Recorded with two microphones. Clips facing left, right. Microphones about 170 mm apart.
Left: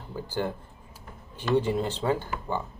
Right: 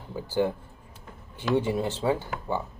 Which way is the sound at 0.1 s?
10° right (ahead or behind).